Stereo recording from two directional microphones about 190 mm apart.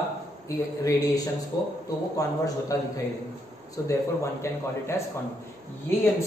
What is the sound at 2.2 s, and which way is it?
Speech, 15° left (ahead or behind).